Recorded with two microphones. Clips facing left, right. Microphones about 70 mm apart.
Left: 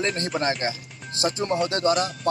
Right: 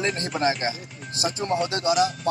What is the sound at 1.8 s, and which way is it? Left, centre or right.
Music, left.